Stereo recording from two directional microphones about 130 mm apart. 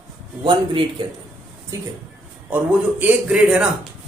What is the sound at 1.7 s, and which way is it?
Speech, 25° right (ahead or behind).